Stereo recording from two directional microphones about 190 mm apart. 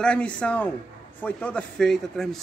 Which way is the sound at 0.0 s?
5° left (ahead or behind).